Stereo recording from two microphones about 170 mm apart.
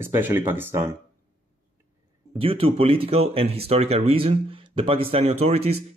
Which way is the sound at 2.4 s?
35° right (ahead or behind).